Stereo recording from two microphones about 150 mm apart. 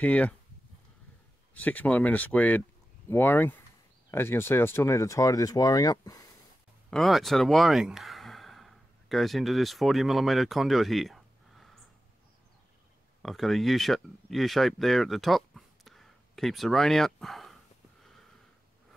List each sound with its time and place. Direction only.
0.0 s speech: 10° left (ahead or behind)
1.5 s speech: 10° left (ahead or behind)
6.9 s speech: centre (ahead or behind)
13.2 s speech: centre (ahead or behind)